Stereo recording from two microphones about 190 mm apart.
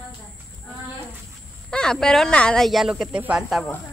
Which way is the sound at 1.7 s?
5° left (ahead or behind).